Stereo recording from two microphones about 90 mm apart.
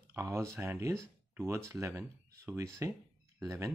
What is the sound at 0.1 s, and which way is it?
Speech, 30° right (ahead or behind).